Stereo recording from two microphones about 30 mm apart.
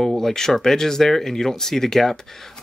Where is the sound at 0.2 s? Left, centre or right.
Centre.